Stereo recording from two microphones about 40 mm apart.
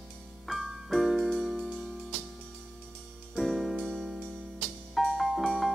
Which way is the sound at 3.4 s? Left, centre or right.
Centre.